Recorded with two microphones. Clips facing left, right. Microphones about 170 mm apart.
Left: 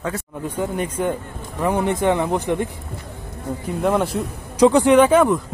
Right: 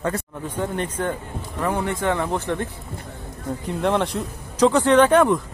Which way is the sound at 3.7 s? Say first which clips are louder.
Left 2 dB; centre (ahead or behind).